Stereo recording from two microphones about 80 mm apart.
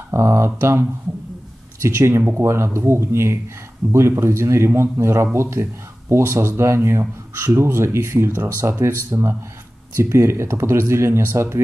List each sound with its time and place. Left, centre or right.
0.1 s speech: right